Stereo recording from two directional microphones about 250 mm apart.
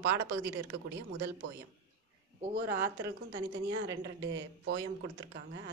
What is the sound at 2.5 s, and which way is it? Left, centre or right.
Speech, right.